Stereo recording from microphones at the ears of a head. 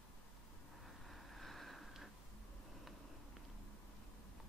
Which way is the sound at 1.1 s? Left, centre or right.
Centre.